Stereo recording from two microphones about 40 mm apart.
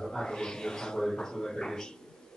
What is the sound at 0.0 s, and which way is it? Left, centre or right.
Speech, centre.